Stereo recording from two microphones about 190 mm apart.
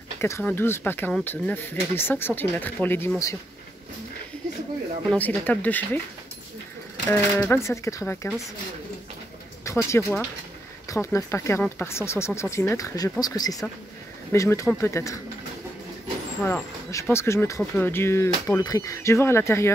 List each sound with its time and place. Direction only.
0.2 s speech: 10° left (ahead or behind)
5.1 s speech: 10° left (ahead or behind)
7.1 s speech: 15° left (ahead or behind)
9.8 s speech: 15° left (ahead or behind)
16.4 s speech: 10° left (ahead or behind)